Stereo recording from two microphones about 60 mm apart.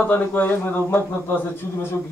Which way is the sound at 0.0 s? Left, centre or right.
Left.